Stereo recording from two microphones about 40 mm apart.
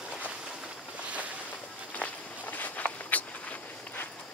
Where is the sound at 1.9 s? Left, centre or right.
Left.